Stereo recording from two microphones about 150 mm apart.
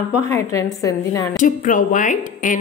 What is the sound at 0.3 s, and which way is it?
Speech, 20° left (ahead or behind).